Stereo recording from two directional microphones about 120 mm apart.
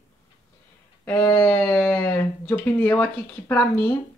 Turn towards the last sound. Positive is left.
turn(degrees=15)  # may be behind; listen again after turning